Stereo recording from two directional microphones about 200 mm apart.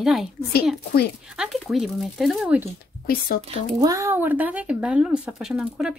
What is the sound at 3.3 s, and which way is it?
Speech, 50° left (ahead or behind).